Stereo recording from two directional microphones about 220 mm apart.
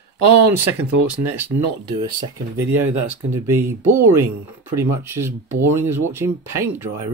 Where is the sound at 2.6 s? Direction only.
10° right (ahead or behind).